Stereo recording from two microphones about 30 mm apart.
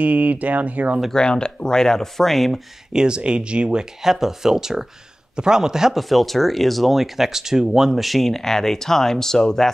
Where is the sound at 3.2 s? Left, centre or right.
Right.